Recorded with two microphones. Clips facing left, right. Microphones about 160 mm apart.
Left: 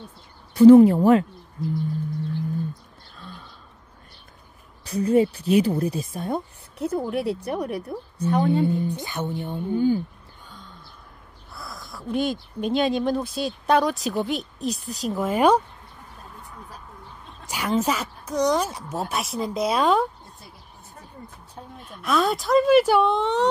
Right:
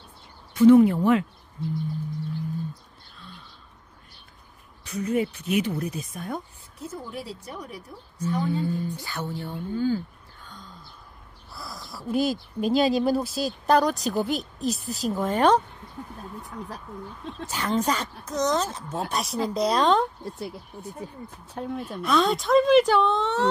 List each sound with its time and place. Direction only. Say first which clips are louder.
0.6 s a woman's voice: left 4 dB; 35° left (ahead or behind)
3.2 s bird: left 5 dB; 45° left (ahead or behind)
4.8 s a woman's voice: left 6 dB; 35° left (ahead or behind)
6.8 s a woman's voice: left 10 dB; 65° left (ahead or behind)
8.6 s speech: left 5 dB; 20° left (ahead or behind)
11.5 s speech: even; centre (ahead or behind)
17.5 s speech: left 2 dB; 10° left (ahead or behind)
20.2 s speech: right 14 dB; 85° right
21.5 s speech: right 11 dB; 90° right
22.0 s speech: even; centre (ahead or behind)